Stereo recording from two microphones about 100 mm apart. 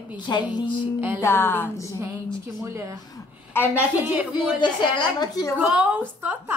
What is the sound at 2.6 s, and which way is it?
Speech, 30° right (ahead or behind).